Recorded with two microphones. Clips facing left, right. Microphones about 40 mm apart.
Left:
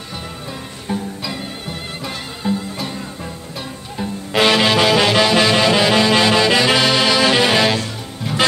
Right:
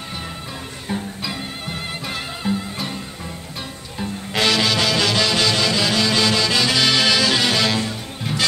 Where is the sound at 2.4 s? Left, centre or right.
Centre.